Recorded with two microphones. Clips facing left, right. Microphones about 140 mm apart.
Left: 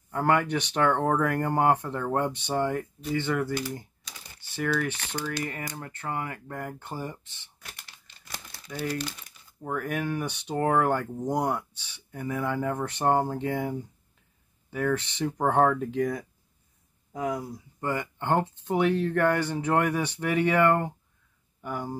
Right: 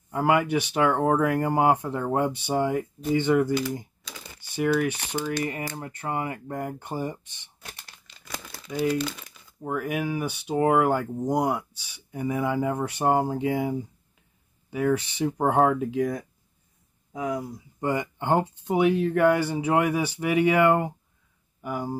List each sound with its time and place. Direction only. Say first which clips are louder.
0.1 s speech: right 2 dB; 10° right (ahead or behind)
9.6 s speech: right 2 dB; 10° right (ahead or behind)
17.7 s speech: right 4 dB; 20° right (ahead or behind)